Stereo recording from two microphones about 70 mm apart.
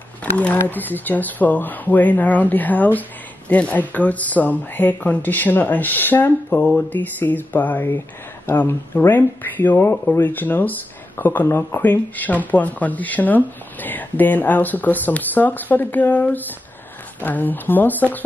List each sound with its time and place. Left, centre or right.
0.2 s speech: left